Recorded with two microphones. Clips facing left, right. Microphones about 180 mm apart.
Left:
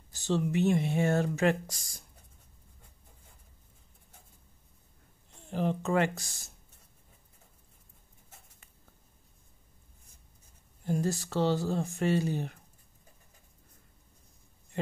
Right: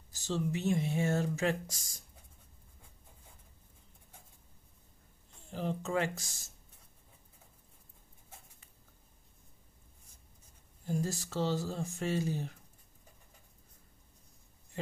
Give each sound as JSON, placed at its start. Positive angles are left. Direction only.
{"t": 0.1, "sound": "speech", "side_deg": 65}
{"t": 5.5, "sound": "speech", "side_deg": 65}
{"t": 10.9, "sound": "speech", "side_deg": 65}